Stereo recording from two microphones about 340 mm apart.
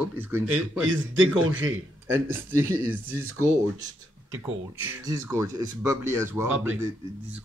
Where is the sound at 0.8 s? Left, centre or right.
Right.